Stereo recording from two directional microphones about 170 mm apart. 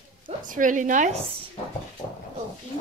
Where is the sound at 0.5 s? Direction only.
50° right (ahead or behind).